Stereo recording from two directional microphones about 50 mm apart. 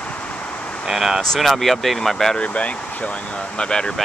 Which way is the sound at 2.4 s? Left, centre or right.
Left.